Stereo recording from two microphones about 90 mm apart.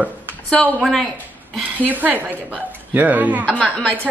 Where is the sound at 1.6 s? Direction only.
20° right (ahead or behind).